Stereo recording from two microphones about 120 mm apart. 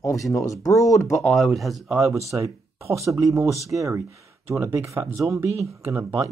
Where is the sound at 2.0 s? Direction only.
25° right (ahead or behind).